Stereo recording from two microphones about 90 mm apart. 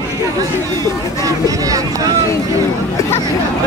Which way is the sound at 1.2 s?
40° right (ahead or behind).